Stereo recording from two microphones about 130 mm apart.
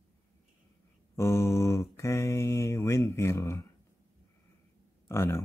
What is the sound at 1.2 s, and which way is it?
Mantra, 20° left (ahead or behind).